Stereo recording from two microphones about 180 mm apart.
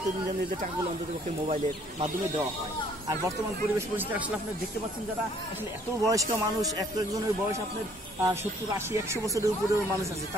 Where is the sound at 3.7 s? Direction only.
10° right (ahead or behind).